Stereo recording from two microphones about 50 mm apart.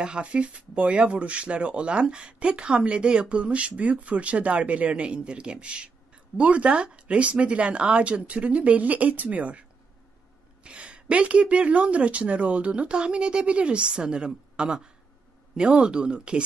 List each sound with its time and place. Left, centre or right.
0.0 s speech: right